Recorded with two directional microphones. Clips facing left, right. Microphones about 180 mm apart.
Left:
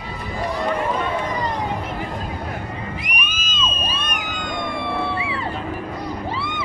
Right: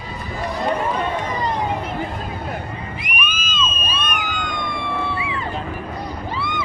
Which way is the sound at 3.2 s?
35° left (ahead or behind).